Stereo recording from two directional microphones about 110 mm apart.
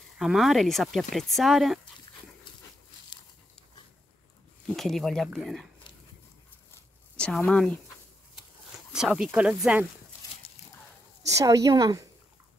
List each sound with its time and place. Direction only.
0.2 s speech: centre (ahead or behind)
4.6 s speech: 5° left (ahead or behind)
7.2 s speech: 5° left (ahead or behind)
8.9 s speech: 5° right (ahead or behind)
11.3 s a woman's voice: 30° right (ahead or behind)